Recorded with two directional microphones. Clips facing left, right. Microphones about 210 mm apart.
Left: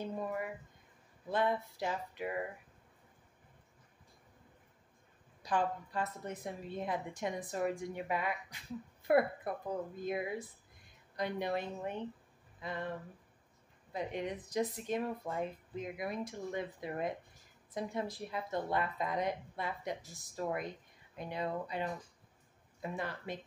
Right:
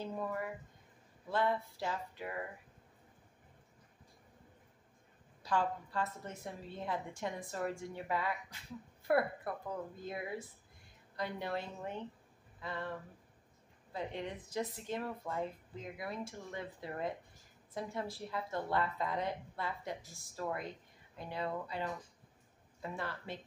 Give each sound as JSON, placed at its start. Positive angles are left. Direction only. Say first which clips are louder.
{"t": 0.0, "sound": "a sound", "louder": "left 1 dB", "side_deg": 15}
{"t": 1.3, "sound": "speech", "louder": "left 1 dB", "side_deg": 15}
{"t": 5.4, "sound": "speech", "louder": "left 1 dB", "side_deg": 15}
{"t": 13.9, "sound": "speech", "louder": "left 3 dB", "side_deg": 15}